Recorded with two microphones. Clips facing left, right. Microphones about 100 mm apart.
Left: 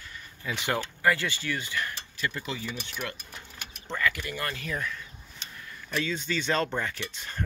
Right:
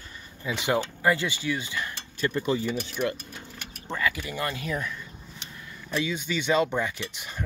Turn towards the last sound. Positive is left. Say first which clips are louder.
# right 1 dB
turn(degrees=-15)  # may be behind; listen again after turning